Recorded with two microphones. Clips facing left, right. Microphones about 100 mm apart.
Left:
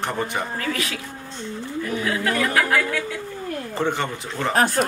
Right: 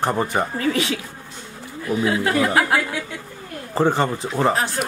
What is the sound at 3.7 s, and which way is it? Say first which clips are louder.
Speech: right 7 dB; 35° right (ahead or behind).